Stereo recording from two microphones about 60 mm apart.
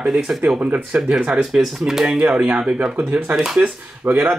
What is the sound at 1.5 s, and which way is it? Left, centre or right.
Speech, centre.